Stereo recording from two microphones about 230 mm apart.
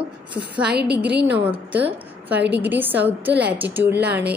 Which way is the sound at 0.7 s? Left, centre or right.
Right.